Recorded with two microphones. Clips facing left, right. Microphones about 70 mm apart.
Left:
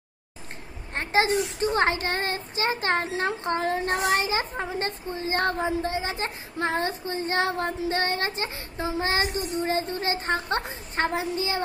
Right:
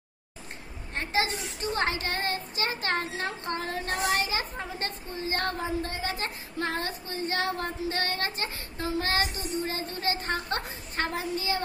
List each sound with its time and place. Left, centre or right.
0.9 s speech: left